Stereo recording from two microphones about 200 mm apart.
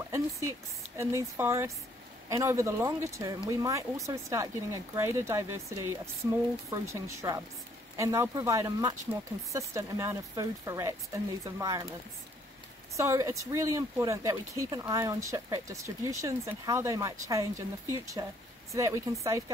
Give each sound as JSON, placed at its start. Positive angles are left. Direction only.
{"t": 0.1, "sound": "speech", "side_deg": -15}
{"t": 12.9, "sound": "speech", "side_deg": -15}